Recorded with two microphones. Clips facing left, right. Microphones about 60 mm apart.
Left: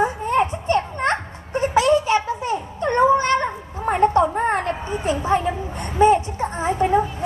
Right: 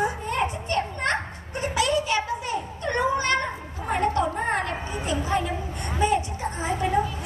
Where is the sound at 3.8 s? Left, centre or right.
Left.